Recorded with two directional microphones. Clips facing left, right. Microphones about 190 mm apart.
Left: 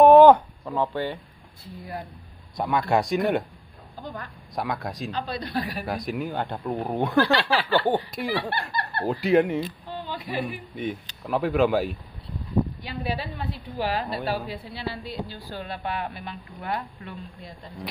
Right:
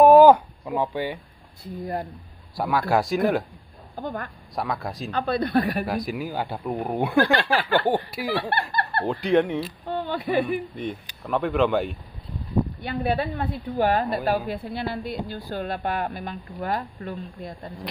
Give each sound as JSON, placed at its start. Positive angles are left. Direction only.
{"t": 0.0, "sound": "a sound", "side_deg": -5}
{"t": 0.7, "sound": "speech", "side_deg": -15}
{"t": 1.8, "sound": "a woman's voice", "side_deg": -45}
{"t": 2.5, "sound": "speech", "side_deg": -5}
{"t": 3.9, "sound": "a woman's voice", "side_deg": -50}
{"t": 4.6, "sound": "speech", "side_deg": 0}
{"t": 5.1, "sound": "speech", "side_deg": -55}
{"t": 5.9, "sound": "speech", "side_deg": 0}
{"t": 7.2, "sound": "a woman's voice", "side_deg": -50}
{"t": 9.0, "sound": "speech", "side_deg": 5}
{"t": 9.8, "sound": "a sound", "side_deg": -55}
{"t": 10.8, "sound": "speech", "side_deg": 0}
{"t": 12.8, "sound": "a woman's voice", "side_deg": -55}